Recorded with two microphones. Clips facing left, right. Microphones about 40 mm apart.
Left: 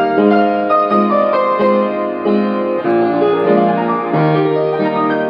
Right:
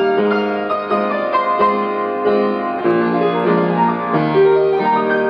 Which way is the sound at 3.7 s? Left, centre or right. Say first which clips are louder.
Left 1 dB; left.